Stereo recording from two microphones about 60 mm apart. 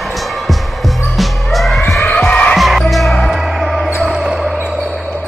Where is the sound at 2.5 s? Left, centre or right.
Centre.